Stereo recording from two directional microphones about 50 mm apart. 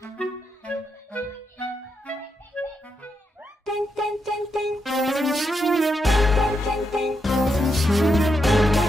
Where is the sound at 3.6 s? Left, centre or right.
Centre.